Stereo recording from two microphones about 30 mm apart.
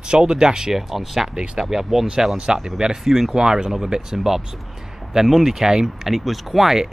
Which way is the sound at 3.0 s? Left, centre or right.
Centre.